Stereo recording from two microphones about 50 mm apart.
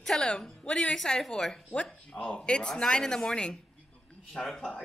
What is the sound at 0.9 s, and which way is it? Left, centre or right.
Speech, centre.